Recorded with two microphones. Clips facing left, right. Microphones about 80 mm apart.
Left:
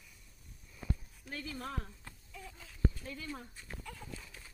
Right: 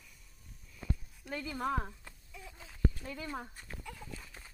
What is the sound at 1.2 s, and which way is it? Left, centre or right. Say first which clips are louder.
Speech: right 6 dB; right.